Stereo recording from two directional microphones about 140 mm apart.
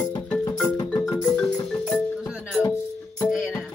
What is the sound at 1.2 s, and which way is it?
Music, 15° left (ahead or behind).